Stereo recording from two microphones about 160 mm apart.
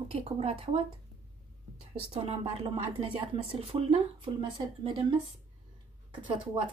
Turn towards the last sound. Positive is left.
turn(degrees=-35)  # may be behind; listen again after turning